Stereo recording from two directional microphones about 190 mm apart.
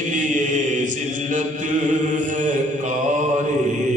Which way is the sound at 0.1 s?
40° right (ahead or behind).